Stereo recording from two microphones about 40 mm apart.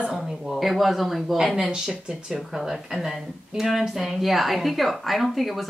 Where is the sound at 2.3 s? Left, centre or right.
Centre.